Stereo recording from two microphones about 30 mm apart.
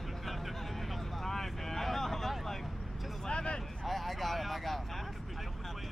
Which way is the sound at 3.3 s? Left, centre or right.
Left.